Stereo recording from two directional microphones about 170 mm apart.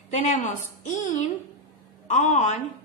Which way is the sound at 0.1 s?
45° left (ahead or behind).